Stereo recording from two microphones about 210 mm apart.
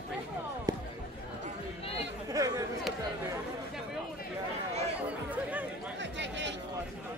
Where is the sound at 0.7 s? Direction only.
20° right (ahead or behind).